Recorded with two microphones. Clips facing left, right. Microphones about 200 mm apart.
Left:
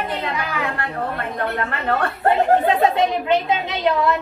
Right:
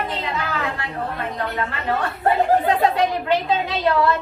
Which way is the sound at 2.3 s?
25° left (ahead or behind).